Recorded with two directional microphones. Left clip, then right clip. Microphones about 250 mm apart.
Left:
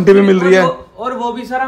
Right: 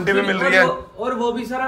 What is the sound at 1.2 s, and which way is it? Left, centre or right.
Speech, centre.